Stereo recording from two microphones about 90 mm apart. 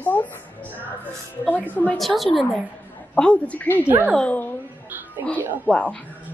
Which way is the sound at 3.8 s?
20° right (ahead or behind).